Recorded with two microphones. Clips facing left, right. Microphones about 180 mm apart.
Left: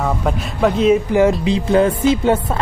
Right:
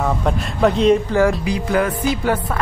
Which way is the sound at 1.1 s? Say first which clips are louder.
Left 3 dB; 25° left (ahead or behind).